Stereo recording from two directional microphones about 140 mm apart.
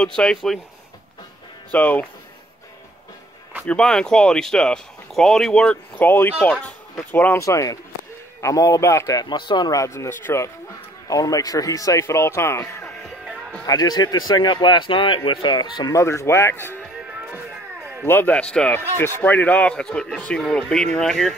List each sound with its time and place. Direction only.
0.0 s speech: 5° left (ahead or behind)
1.7 s speech: 10° left (ahead or behind)
3.6 s speech: 5° left (ahead or behind)
12.8 s music: centre (ahead or behind)
13.7 s speech: 30° left (ahead or behind)
18.0 s speech: 15° left (ahead or behind)